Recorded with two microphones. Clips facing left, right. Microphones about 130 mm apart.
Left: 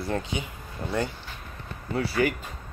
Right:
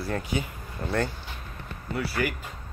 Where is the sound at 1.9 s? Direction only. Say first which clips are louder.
Left 4 dB; 25° left (ahead or behind).